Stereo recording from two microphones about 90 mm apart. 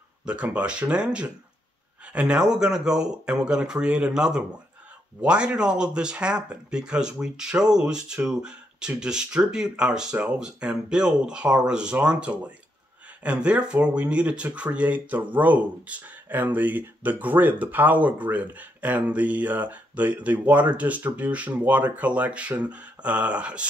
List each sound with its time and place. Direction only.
0.2 s speech: 10° right (ahead or behind)